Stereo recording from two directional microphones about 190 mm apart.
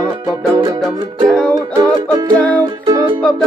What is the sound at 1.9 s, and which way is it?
Music, 20° right (ahead or behind).